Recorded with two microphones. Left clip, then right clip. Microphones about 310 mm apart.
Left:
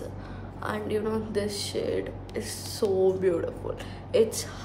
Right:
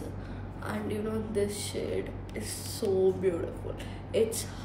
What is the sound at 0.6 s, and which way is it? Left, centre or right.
A woman's voice, centre.